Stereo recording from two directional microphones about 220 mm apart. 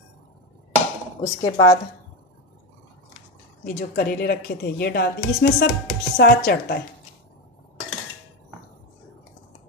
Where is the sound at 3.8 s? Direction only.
45° left (ahead or behind).